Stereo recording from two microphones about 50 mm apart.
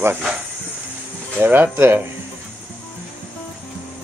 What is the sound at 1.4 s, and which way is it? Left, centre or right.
Speech, right.